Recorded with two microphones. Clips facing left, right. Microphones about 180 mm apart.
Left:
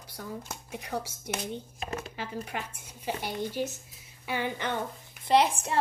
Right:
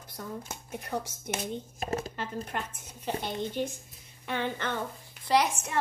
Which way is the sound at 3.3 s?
20° right (ahead or behind).